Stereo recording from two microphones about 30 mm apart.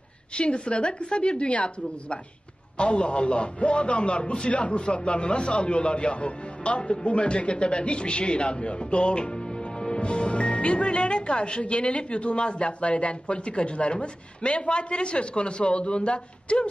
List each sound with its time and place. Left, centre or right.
0.3 s a man's voice: left